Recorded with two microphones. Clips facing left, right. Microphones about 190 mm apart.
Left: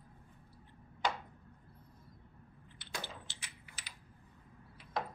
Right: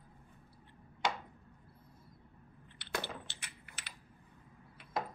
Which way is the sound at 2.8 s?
65° right (ahead or behind).